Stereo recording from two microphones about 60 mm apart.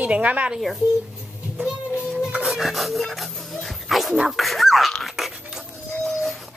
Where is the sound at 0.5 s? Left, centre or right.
Centre.